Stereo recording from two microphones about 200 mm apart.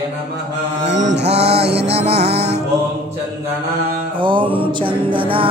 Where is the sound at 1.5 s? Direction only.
30° right (ahead or behind).